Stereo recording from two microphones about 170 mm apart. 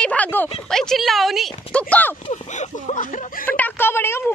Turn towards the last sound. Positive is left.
turn(degrees=15)  # may be behind; listen again after turning